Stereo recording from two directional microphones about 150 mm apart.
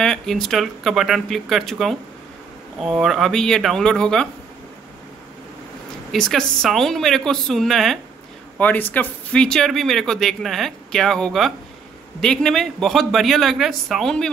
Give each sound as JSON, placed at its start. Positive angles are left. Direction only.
{"t": 0.0, "sound": "speech", "side_deg": 5}
{"t": 6.1, "sound": "speech", "side_deg": 5}